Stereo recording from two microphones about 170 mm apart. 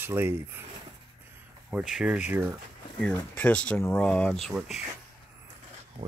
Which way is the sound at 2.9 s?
5° left (ahead or behind).